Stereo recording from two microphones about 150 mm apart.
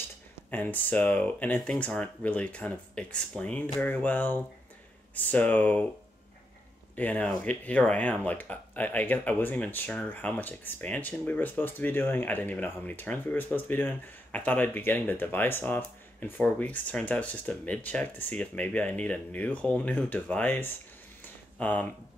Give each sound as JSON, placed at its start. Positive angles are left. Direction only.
{"t": 0.5, "sound": "speech", "side_deg": 10}
{"t": 7.0, "sound": "speech", "side_deg": 10}
{"t": 21.2, "sound": "a sound", "side_deg": 10}